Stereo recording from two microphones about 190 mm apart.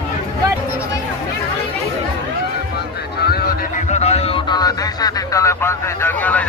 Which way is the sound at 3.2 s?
55° left (ahead or behind).